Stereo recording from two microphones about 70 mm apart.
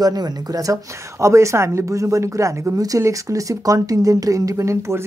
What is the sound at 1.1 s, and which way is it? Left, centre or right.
Speech, right.